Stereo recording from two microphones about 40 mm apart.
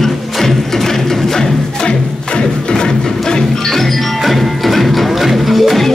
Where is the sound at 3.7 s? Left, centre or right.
Centre.